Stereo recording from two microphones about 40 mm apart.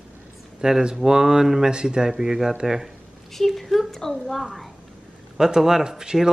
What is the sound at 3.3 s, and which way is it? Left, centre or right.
A woman's voice, centre.